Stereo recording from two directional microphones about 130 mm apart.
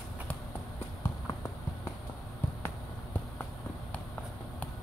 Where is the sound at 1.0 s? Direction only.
20° left (ahead or behind).